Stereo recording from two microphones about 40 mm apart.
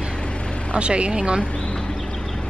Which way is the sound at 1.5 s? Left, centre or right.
Left.